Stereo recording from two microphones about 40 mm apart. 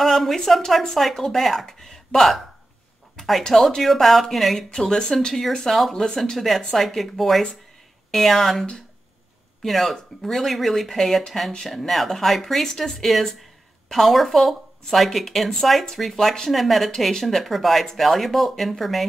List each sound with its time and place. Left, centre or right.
0.0 s a woman's voice: centre
4.6 s a woman's voice: centre
6.0 s speech: centre
6.3 s a woman's voice: centre
15.8 s a woman's voice: centre